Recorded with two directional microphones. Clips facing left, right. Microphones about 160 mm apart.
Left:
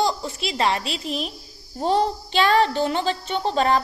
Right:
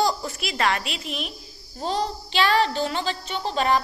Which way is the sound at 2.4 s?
20° left (ahead or behind).